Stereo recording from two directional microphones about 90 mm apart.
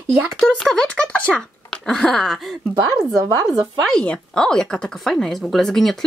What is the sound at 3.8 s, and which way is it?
Speech, 5° left (ahead or behind).